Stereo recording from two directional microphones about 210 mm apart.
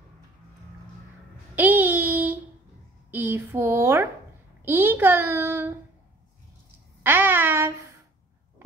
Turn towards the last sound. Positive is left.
turn(degrees=-10)  # may be behind; listen again after turning